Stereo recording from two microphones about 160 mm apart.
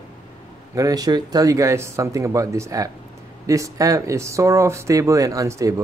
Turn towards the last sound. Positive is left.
turn(degrees=-20)  # may be behind; listen again after turning